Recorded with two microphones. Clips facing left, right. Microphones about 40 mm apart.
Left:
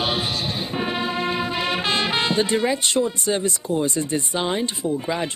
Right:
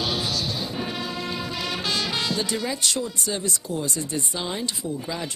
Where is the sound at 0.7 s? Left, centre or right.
Left.